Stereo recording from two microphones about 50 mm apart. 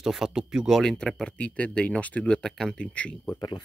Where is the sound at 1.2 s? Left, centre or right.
Left.